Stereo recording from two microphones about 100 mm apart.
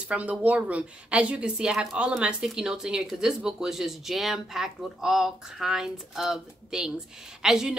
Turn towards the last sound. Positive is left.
turn(degrees=-5)  # may be behind; listen again after turning